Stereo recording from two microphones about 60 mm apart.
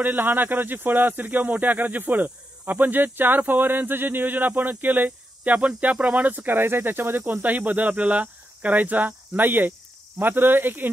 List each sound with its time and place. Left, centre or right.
0.0 s speech: right